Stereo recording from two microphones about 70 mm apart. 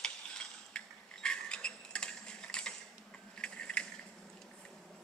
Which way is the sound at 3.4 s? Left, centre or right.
Centre.